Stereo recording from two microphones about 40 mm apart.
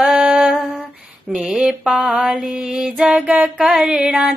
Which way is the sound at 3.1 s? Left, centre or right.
Right.